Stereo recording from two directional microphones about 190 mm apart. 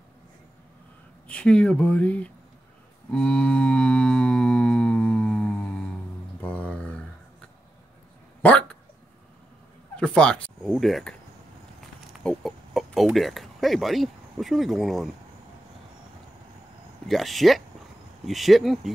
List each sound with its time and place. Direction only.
1.2 s speech: 5° left (ahead or behind)
3.1 s music: 5° left (ahead or behind)
6.4 s a sound: 5° left (ahead or behind)
8.4 s dog: 5° left (ahead or behind)
9.9 s speech: 5° left (ahead or behind)
17.1 s speech: centre (ahead or behind)